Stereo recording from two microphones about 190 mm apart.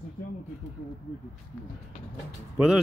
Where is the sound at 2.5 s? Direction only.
5° right (ahead or behind).